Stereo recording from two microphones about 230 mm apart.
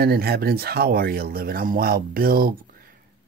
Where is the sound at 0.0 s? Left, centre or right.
Right.